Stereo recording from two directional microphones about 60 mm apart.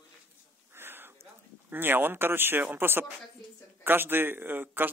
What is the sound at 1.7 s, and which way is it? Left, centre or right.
A man's voice, right.